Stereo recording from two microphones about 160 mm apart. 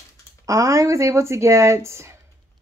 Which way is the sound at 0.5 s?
20° right (ahead or behind).